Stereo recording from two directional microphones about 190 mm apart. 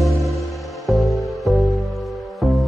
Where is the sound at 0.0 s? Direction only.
Centre (ahead or behind).